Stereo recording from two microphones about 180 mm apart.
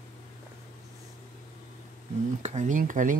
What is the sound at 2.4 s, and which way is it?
Speech, 40° right (ahead or behind).